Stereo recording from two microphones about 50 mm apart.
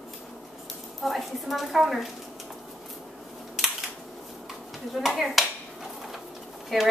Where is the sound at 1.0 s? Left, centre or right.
Centre.